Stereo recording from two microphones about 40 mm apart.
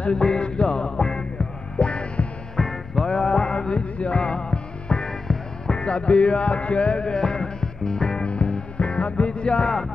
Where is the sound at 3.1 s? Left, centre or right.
Centre.